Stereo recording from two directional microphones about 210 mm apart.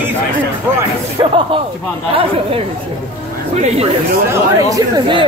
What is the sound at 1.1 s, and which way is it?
Speech, 25° right (ahead or behind).